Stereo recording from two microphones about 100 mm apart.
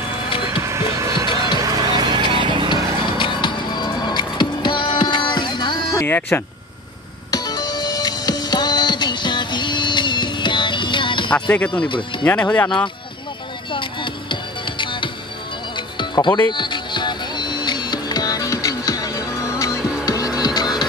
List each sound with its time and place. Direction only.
0.6 s music: 30° right (ahead or behind)
1.6 s vehicle: 40° right (ahead or behind)
2.7 s music: 50° left (ahead or behind)
5.9 s speech: 20° left (ahead or behind)
7.2 s music: 40° left (ahead or behind)
11.3 s speech: 15° left (ahead or behind)
13.7 s music: 55° left (ahead or behind); by 19.2 s 40° left (ahead or behind)
19.8 s music: 10° right (ahead or behind)
20.3 s music: 40° left (ahead or behind)